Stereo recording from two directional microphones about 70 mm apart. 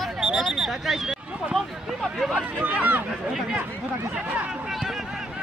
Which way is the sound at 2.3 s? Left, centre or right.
Centre.